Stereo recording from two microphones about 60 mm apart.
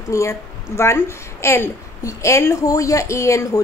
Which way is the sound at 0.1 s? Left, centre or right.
Left.